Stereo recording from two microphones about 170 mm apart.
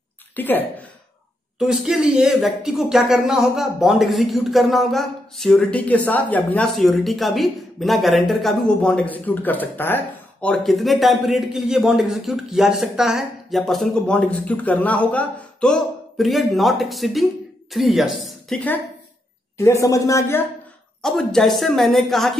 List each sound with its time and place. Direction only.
0.4 s a woman's voice: 10° left (ahead or behind)
1.6 s speech: 5° right (ahead or behind)
19.5 s a woman's voice: 15° left (ahead or behind)
21.0 s speech: centre (ahead or behind)